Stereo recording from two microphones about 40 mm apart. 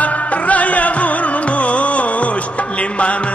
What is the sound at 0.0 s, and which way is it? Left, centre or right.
Music, left.